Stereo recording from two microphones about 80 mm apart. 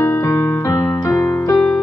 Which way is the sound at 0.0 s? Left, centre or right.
Left.